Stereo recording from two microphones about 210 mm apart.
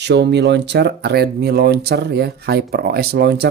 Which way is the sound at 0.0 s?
55° right (ahead or behind).